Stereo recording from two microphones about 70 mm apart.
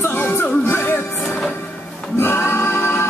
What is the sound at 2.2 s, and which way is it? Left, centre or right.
Music, left.